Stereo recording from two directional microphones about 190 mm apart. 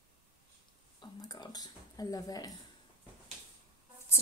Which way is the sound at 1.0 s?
20° left (ahead or behind).